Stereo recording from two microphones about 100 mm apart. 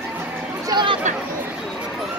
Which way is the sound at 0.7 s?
50° right (ahead or behind).